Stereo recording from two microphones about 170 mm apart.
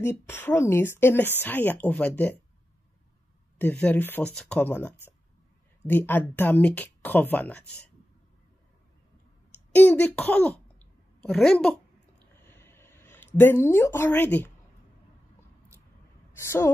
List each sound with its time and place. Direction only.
0.0 s speech: 10° left (ahead or behind)
3.8 s speech: 10° left (ahead or behind)
9.8 s speech: 10° left (ahead or behind)
12.4 s a sound: 15° left (ahead or behind)
16.3 s a woman's voice: 15° left (ahead or behind)